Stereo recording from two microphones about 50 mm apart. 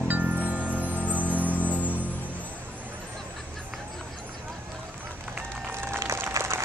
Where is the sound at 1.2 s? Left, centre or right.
Left.